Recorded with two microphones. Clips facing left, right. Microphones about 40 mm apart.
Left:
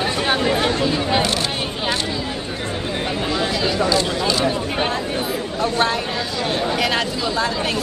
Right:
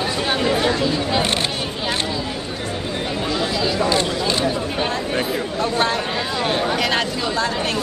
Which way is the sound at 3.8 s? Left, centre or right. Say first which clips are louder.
Even; right.